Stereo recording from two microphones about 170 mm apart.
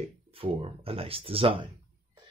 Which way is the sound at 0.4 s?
35° right (ahead or behind).